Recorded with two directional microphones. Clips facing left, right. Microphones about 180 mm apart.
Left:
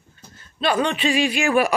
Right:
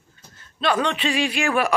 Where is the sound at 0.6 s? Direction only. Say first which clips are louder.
Left 1 dB; 5° left (ahead or behind).